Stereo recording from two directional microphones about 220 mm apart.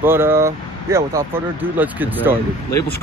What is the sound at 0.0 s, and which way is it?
Speech, 10° right (ahead or behind).